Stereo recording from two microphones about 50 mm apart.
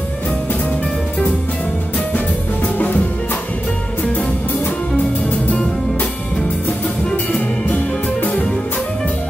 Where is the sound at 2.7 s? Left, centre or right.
Left.